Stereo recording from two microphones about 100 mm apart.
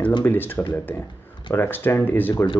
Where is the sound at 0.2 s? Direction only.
20° left (ahead or behind).